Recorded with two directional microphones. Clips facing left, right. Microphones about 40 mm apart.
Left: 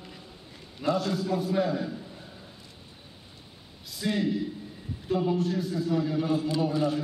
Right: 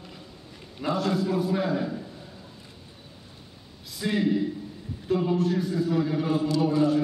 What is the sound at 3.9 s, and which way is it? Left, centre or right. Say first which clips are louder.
A man's voice: right 3 dB; centre.